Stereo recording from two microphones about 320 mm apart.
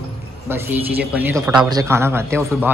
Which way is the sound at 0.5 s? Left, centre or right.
Centre.